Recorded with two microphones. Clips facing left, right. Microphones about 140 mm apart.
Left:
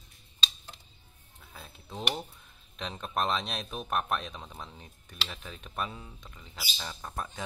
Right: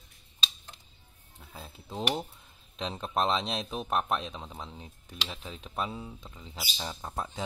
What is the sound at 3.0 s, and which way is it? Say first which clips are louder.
Speech: right 2 dB; 25° right (ahead or behind).